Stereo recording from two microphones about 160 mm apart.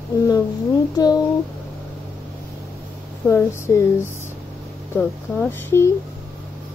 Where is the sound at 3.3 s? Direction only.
15° left (ahead or behind).